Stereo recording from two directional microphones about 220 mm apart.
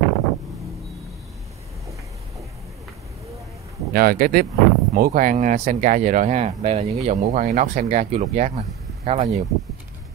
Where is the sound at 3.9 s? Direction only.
45° right (ahead or behind).